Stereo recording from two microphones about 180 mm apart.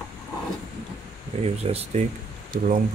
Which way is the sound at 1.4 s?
35° right (ahead or behind).